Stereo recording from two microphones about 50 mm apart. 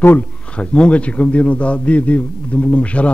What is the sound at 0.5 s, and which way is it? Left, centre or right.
A man's voice, left.